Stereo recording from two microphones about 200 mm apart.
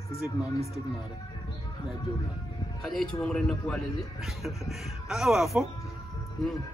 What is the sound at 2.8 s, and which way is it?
Speech, centre (ahead or behind).